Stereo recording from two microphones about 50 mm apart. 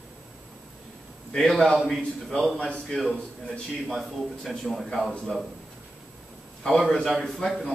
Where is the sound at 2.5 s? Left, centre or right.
Left.